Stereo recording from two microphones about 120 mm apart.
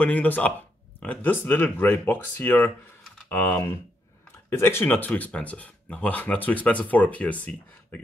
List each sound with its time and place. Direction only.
0.0 s speech: 15° left (ahead or behind)